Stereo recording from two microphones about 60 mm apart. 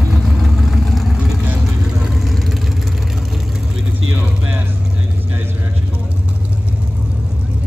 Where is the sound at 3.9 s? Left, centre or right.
Right.